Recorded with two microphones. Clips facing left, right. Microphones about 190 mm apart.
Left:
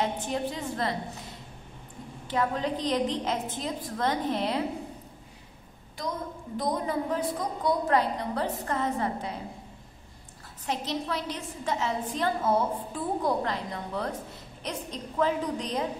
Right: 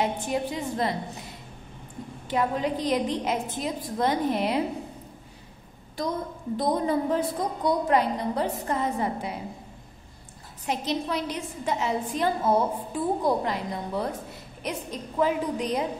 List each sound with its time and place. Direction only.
0.0 s a woman's voice: 10° right (ahead or behind)
2.2 s a woman's voice: 15° right (ahead or behind)
6.5 s a woman's voice: 30° right (ahead or behind)
7.9 s a woman's voice: 15° right (ahead or behind)
10.7 s a woman's voice: 15° right (ahead or behind)